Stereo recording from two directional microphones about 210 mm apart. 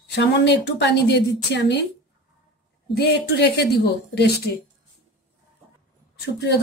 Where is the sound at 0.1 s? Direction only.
55° left (ahead or behind).